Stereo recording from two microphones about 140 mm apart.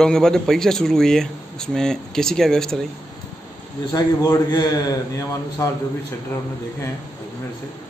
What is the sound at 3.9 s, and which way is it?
A man's voice, 30° left (ahead or behind).